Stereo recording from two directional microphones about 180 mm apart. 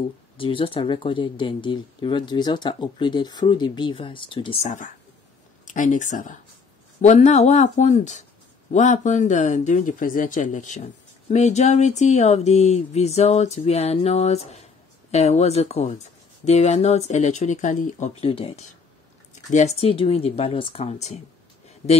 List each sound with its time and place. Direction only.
0.4 s speech: 30° left (ahead or behind)